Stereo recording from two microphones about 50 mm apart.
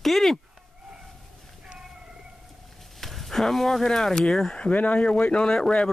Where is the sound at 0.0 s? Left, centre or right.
Centre.